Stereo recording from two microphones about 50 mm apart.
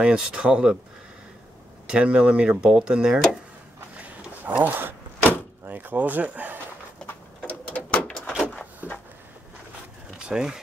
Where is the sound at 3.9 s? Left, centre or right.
Right.